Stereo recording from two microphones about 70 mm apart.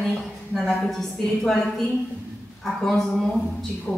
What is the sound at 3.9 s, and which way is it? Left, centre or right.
Speech, left.